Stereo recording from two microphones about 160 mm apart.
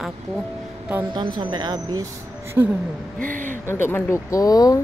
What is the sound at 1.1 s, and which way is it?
Speech, 30° right (ahead or behind).